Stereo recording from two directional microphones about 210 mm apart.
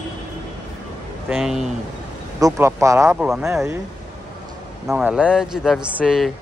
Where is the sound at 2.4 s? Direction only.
15° right (ahead or behind).